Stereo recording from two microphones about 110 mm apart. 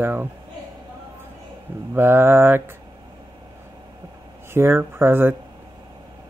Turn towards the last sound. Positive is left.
turn(degrees=-20)  # may be behind; listen again after turning